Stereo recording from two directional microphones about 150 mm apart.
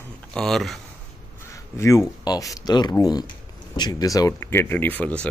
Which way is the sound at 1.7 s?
20° left (ahead or behind).